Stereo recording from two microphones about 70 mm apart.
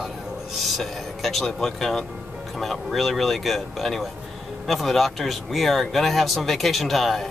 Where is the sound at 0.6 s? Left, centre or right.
Centre.